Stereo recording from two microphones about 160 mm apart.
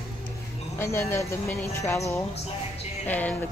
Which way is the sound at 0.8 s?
15° left (ahead or behind).